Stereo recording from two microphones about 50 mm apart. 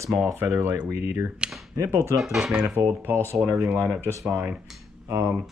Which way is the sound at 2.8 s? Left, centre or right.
Right.